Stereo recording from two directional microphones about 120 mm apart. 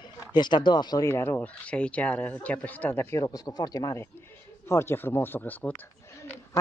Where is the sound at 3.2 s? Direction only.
30° left (ahead or behind).